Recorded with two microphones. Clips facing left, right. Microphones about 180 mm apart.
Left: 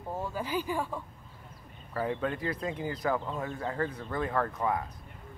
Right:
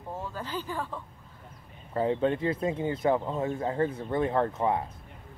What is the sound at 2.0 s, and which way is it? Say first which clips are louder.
Speech: right 6 dB; 25° right (ahead or behind).